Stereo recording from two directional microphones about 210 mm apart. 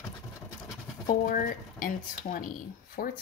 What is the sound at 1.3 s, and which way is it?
Speech, 40° left (ahead or behind).